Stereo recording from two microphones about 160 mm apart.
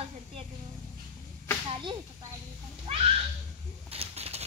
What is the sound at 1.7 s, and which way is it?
Speech, 30° right (ahead or behind).